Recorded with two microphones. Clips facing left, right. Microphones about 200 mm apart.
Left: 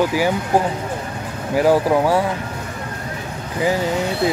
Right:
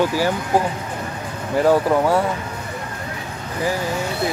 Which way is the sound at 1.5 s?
10° left (ahead or behind).